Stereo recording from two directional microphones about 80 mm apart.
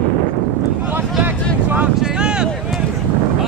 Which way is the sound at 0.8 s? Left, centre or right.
Right.